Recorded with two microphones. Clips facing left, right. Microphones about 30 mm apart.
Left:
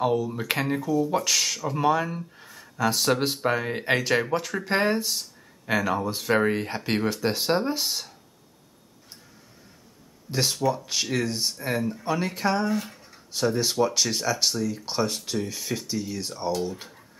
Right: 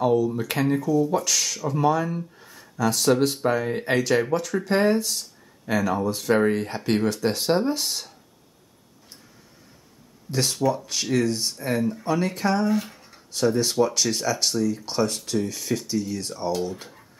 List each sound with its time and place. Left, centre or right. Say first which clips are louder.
0.0 s speech: right 4 dB; centre
10.3 s speech: right 1 dB; centre
12.7 s a sound: right 3 dB; centre
13.3 s speech: right 3 dB; centre